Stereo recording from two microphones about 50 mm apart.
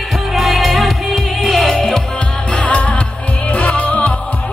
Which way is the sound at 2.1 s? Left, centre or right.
Centre.